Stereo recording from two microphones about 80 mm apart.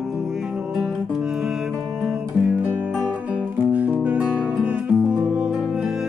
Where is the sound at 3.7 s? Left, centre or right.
Centre.